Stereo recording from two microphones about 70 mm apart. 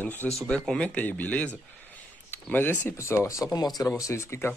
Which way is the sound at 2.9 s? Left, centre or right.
Left.